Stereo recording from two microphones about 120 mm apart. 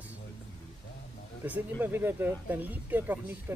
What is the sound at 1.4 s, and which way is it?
Speech, 15° right (ahead or behind).